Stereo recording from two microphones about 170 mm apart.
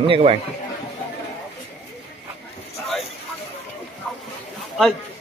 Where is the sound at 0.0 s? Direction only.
30° right (ahead or behind).